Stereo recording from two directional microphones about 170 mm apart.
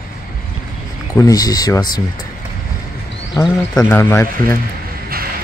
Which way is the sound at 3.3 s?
15° left (ahead or behind).